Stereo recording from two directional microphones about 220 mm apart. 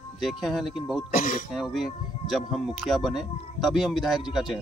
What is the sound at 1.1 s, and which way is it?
Speech, 40° left (ahead or behind).